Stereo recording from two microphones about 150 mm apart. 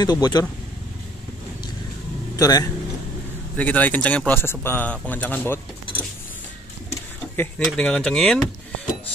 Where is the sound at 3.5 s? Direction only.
10° left (ahead or behind).